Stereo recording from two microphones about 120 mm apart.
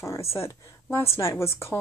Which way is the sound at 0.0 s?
25° left (ahead or behind).